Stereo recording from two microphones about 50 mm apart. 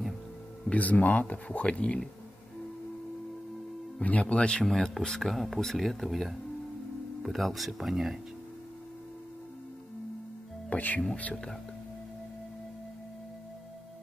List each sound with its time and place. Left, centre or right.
0.7 s speech: left
4.0 s speech: left
4.6 s speech: centre
10.7 s music: left